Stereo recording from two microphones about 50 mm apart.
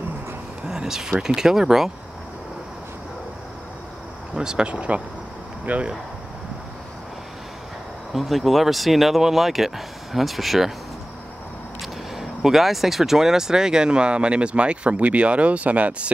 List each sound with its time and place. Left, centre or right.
0.7 s a sound: centre
1.2 s speech: centre
4.4 s speech: centre
8.1 s speech: centre
11.8 s speech: centre; by 16.1 s right